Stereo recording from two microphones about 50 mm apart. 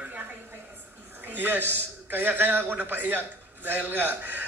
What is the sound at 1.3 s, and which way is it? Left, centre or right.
A man's voice, right.